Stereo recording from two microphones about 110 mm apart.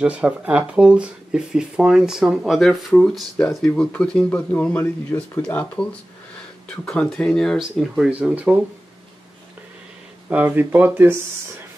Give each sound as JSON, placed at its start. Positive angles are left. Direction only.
{"t": 0.0, "sound": "speech", "side_deg": -10}
{"t": 10.3, "sound": "speech", "side_deg": -15}